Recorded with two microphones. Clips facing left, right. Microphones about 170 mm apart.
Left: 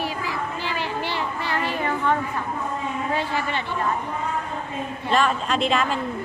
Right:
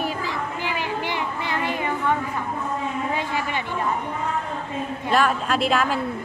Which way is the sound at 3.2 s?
15° right (ahead or behind).